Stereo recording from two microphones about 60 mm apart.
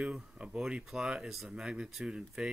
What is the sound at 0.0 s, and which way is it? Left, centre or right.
Speech, centre.